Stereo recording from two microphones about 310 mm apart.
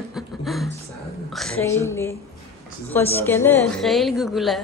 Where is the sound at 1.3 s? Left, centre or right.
Centre.